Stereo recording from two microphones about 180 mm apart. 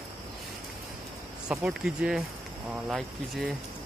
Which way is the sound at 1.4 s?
5° right (ahead or behind).